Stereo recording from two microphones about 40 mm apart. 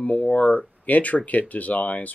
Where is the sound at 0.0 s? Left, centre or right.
Left.